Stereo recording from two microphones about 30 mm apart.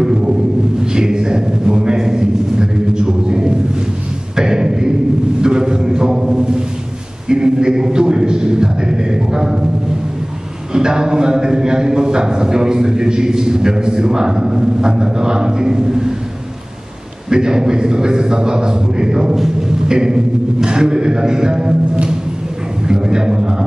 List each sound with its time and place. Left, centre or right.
0.0 s a sound: right
10.7 s a man's voice: right
17.3 s a man's voice: right
19.9 s music: right
20.6 s a man's voice: right
22.8 s a man's voice: right